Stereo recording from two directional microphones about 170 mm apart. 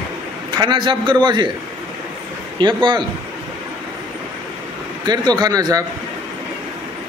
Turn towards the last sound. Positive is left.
turn(degrees=-20)  # may be behind; listen again after turning